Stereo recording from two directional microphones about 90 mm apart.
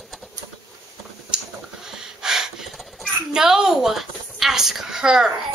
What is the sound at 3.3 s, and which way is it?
A woman's voice, 5° right (ahead or behind).